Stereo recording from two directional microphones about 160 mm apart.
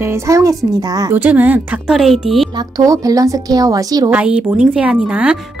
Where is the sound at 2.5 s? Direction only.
20° right (ahead or behind).